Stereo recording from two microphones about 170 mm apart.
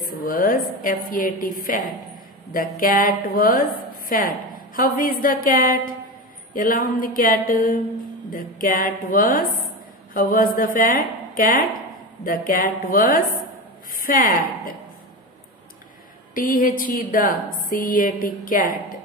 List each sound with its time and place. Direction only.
0.0 s a woman's voice: 55° left (ahead or behind)
2.5 s a woman's voice: 55° left (ahead or behind)
16.3 s speech: 55° left (ahead or behind)